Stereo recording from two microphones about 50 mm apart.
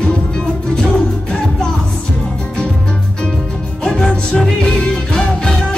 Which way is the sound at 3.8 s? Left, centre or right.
Centre.